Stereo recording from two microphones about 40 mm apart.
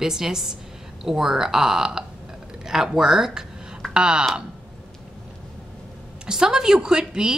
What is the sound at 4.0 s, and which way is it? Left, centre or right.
Speech, right.